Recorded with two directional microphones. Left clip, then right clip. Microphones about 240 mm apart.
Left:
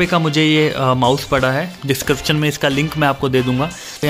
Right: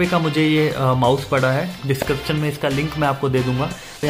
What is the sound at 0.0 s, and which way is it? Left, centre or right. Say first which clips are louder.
Speech: left 3 dB; left.